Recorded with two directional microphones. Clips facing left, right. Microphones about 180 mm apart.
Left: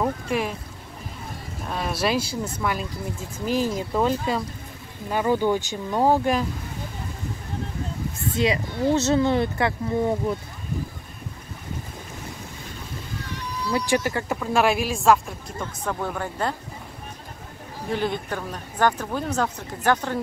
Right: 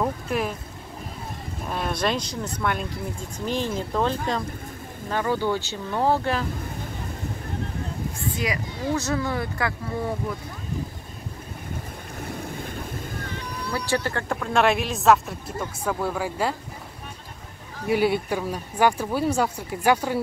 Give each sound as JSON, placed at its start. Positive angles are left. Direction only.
{"t": 0.0, "sound": "speech", "side_deg": 0}
{"t": 1.7, "sound": "speech", "side_deg": 0}
{"t": 8.4, "sound": "speech", "side_deg": 25}
{"t": 13.2, "sound": "a sound", "side_deg": -55}
{"t": 13.7, "sound": "speech", "side_deg": 15}
{"t": 15.6, "sound": "speech", "side_deg": -10}
{"t": 17.8, "sound": "speech", "side_deg": -10}